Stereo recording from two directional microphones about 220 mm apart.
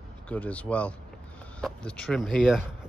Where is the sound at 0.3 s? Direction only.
5° left (ahead or behind).